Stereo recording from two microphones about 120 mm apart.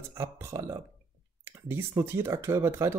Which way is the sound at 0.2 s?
25° right (ahead or behind).